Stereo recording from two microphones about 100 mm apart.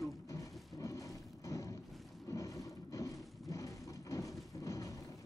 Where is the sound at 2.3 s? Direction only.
35° left (ahead or behind).